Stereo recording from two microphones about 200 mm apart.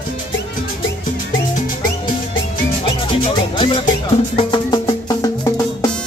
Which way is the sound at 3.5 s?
25° left (ahead or behind).